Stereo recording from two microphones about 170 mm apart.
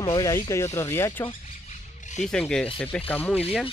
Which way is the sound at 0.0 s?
25° left (ahead or behind).